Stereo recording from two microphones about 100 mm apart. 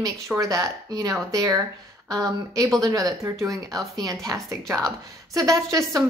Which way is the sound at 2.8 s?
35° right (ahead or behind).